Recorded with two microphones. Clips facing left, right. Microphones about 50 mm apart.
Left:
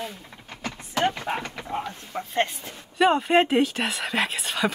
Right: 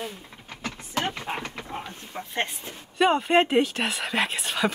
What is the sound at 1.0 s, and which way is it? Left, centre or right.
Speech, centre.